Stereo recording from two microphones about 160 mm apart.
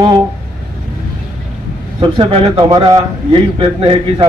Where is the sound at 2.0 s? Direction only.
35° right (ahead or behind).